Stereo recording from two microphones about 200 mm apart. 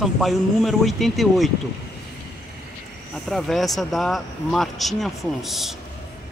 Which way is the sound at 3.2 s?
Centre (ahead or behind).